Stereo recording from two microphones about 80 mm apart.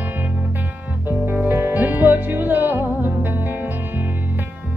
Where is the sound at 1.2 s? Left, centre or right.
Right.